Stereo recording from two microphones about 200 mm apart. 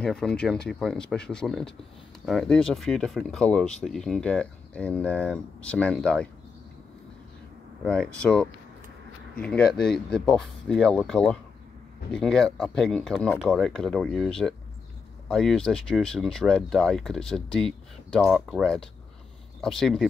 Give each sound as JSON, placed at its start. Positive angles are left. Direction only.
{"t": 0.0, "sound": "speech", "side_deg": 5}
{"t": 7.8, "sound": "speech", "side_deg": 5}